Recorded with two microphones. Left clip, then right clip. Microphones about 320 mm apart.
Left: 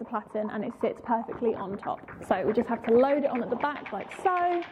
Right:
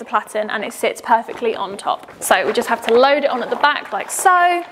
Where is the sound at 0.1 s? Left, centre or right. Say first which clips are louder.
Right 13 dB; centre.